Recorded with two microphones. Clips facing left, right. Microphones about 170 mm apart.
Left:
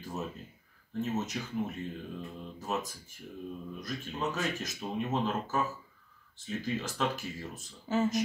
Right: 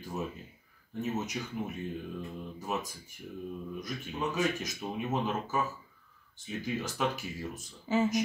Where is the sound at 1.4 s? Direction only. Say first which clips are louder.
Even; 10° right (ahead or behind).